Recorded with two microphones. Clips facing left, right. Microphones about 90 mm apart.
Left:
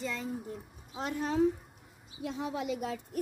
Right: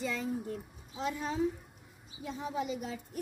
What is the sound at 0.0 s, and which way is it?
Speech, 5° right (ahead or behind).